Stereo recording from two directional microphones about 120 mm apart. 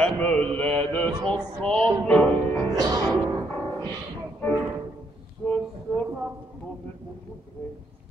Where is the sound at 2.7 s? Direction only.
30° right (ahead or behind).